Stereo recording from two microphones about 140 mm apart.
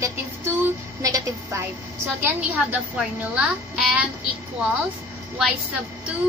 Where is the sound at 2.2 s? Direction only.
10° right (ahead or behind).